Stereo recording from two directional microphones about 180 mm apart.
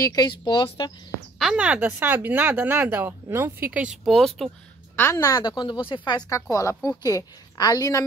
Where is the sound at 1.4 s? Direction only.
5° right (ahead or behind).